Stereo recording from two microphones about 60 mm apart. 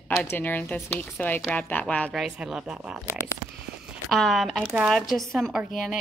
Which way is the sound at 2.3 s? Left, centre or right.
Centre.